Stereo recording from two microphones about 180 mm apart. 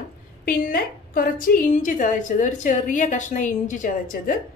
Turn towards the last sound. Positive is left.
turn(degrees=50)  # may be behind; listen again after turning